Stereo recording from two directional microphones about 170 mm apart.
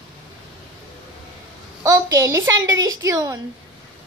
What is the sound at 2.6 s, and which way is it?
Speech, 20° right (ahead or behind).